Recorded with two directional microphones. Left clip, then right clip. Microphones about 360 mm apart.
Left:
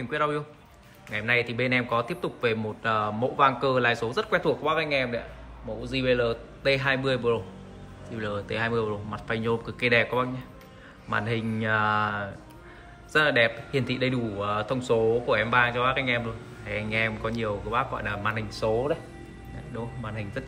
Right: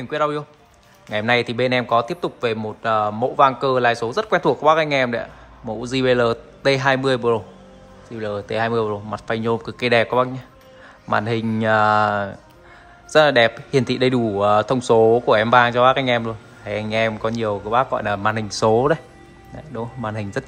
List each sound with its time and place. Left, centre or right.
0.1 s speech: centre
19.7 s speech: centre